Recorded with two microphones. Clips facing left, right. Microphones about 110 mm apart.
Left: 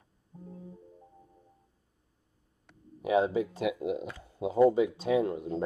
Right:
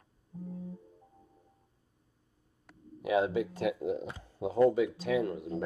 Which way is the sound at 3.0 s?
25° left (ahead or behind).